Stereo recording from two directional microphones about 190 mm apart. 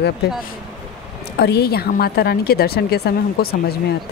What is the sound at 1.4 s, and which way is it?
A woman's voice, 55° left (ahead or behind).